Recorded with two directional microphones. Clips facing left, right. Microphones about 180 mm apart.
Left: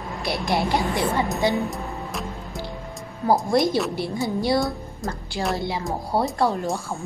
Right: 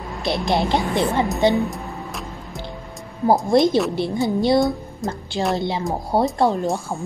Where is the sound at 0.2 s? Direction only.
20° right (ahead or behind).